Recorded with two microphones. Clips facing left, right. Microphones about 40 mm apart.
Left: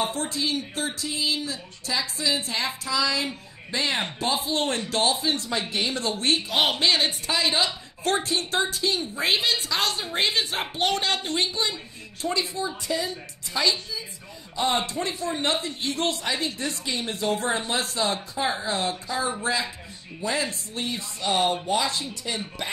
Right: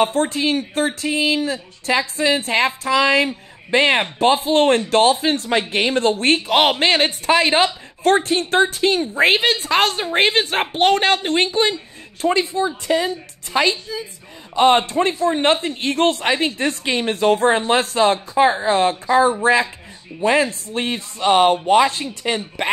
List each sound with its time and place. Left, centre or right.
0.0 s speech: right